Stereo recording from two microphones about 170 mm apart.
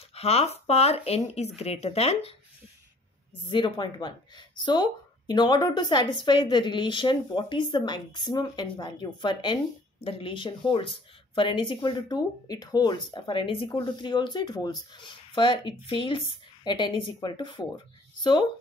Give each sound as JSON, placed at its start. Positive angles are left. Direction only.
{"t": 0.1, "sound": "speech", "side_deg": 35}
{"t": 3.4, "sound": "speech", "side_deg": 30}